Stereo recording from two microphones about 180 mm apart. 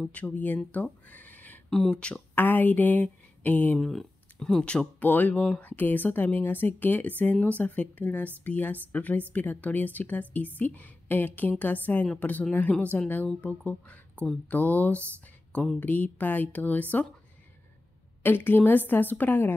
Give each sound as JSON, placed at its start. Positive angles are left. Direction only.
{"t": 0.0, "sound": "speech", "side_deg": 10}
{"t": 18.2, "sound": "speech", "side_deg": 10}